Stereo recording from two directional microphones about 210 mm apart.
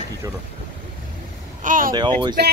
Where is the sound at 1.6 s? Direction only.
40° right (ahead or behind).